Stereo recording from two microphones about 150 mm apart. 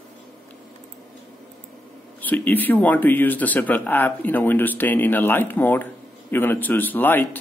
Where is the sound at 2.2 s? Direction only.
10° left (ahead or behind).